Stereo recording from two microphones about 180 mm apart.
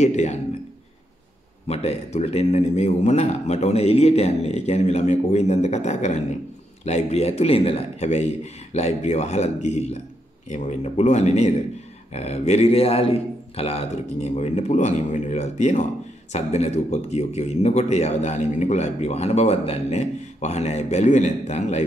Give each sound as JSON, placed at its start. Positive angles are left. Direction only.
{"t": 0.0, "sound": "a man's voice", "side_deg": 40}
{"t": 1.7, "sound": "a man's voice", "side_deg": 35}